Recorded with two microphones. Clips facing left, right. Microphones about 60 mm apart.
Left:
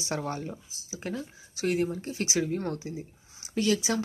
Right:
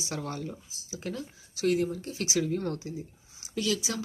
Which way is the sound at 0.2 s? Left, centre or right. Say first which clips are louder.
Left 2 dB; left.